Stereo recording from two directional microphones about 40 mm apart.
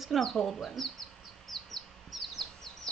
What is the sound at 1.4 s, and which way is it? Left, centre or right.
Bird, centre.